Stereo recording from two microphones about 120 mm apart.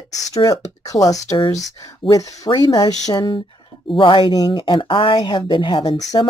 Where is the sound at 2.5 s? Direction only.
35° left (ahead or behind).